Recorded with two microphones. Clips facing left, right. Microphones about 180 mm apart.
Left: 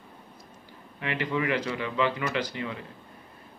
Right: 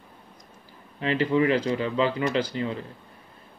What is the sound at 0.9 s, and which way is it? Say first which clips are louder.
Speech: right 7 dB; 30° right (ahead or behind).